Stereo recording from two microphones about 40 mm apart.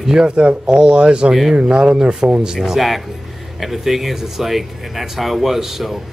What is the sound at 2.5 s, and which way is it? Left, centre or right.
Speech, centre.